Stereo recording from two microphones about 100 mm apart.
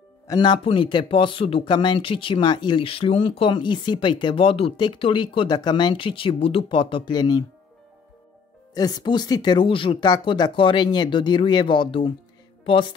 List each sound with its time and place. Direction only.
0.3 s speech: 45° left (ahead or behind); by 1.6 s 65° left (ahead or behind)
1.6 s speech: 50° left (ahead or behind)
8.7 s speech: 40° left (ahead or behind); by 10.0 s 60° left (ahead or behind)
10.0 s speech: 45° left (ahead or behind)
12.6 s music: 55° left (ahead or behind)